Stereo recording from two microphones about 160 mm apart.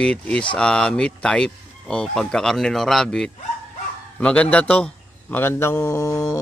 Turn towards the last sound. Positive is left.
turn(degrees=20)  # may be behind; listen again after turning